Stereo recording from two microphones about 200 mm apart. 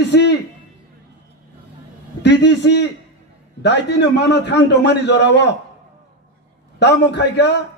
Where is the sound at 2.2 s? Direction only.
60° left (ahead or behind).